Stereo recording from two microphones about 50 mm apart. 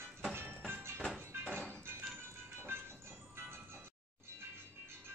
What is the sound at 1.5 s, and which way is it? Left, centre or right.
Music, left.